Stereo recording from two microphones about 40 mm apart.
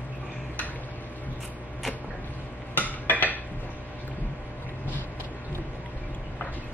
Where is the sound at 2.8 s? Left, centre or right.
Left.